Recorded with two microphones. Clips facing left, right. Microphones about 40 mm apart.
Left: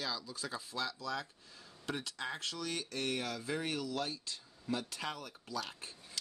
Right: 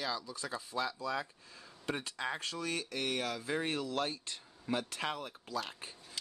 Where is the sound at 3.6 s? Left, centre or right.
Right.